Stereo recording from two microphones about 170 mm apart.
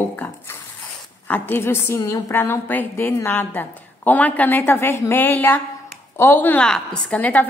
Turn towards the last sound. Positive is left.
turn(degrees=10)  # may be behind; listen again after turning